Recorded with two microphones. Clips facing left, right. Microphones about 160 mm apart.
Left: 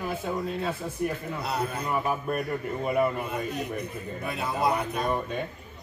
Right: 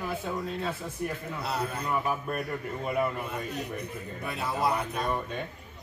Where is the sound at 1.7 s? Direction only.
10° left (ahead or behind).